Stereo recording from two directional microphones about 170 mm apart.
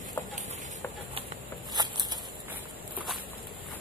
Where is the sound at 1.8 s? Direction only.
25° right (ahead or behind).